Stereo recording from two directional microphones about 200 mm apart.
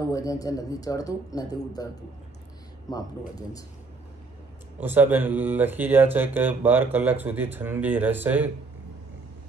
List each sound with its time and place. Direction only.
0.1 s speech: 15° left (ahead or behind)
2.9 s speech: 20° left (ahead or behind)
4.7 s speech: 10° right (ahead or behind)